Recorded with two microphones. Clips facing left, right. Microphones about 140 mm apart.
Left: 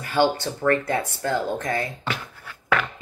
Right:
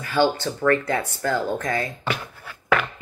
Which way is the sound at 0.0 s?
20° left (ahead or behind).